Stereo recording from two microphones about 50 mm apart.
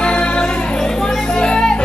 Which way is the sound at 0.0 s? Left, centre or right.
Left.